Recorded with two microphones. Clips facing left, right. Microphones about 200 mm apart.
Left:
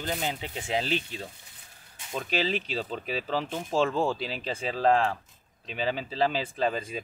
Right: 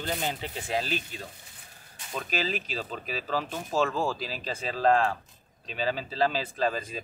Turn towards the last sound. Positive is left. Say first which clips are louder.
# left 1 dB
turn(degrees=15)  # may be behind; listen again after turning